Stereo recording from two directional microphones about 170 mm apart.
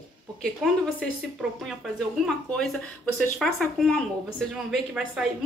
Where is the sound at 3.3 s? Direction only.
Centre (ahead or behind).